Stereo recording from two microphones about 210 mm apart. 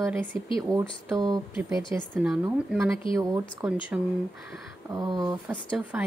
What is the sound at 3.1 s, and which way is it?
Speech, 25° left (ahead or behind).